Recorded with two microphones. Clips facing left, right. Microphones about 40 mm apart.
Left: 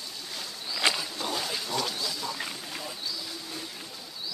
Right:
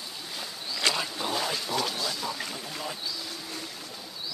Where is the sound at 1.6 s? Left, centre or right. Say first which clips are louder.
Right 2 dB; centre.